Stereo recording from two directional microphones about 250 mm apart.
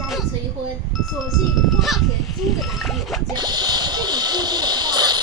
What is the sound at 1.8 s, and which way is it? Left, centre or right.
Goat, centre.